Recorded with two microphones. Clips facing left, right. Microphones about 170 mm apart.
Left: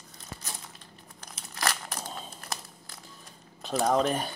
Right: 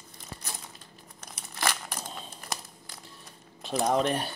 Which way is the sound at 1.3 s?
5° right (ahead or behind).